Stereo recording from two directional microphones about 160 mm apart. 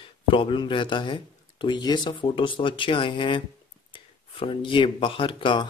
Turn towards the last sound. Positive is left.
turn(degrees=30)  # may be behind; listen again after turning